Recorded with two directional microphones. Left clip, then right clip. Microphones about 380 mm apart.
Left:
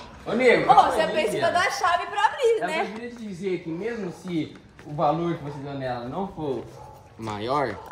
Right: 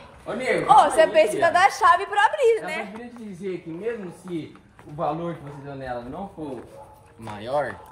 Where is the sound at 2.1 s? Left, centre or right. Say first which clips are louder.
Right 3 dB; right.